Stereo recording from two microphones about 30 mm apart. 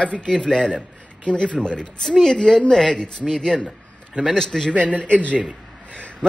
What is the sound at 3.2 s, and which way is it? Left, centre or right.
Speech, centre.